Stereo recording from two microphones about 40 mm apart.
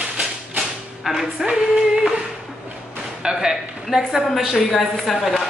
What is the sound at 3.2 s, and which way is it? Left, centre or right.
A woman's voice, centre.